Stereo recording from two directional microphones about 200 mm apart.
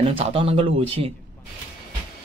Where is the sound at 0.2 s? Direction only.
30° right (ahead or behind).